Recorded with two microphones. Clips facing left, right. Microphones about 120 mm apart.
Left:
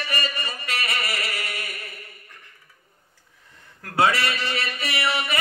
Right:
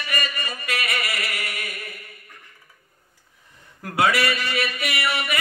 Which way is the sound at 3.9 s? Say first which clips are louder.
Even; 25° left (ahead or behind).